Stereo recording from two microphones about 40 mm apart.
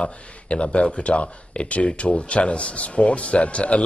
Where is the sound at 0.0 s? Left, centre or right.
Left.